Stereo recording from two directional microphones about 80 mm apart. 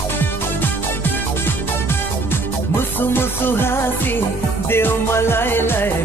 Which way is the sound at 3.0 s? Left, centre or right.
Left.